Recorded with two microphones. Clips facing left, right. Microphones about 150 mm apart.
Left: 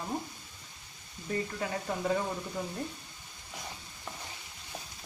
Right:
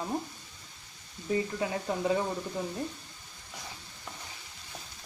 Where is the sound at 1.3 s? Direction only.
15° right (ahead or behind).